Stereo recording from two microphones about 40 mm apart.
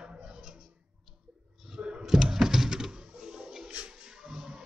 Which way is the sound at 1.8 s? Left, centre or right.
Right.